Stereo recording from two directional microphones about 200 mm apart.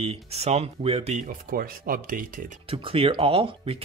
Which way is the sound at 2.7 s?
25° right (ahead or behind).